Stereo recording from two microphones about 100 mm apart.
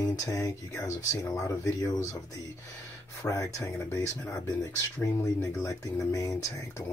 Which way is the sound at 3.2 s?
35° left (ahead or behind).